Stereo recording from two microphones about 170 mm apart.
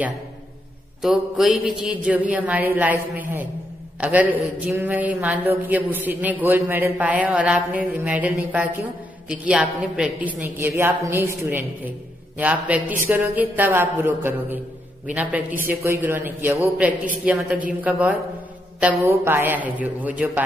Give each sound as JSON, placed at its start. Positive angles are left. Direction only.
{"t": 1.0, "sound": "speech", "side_deg": 0}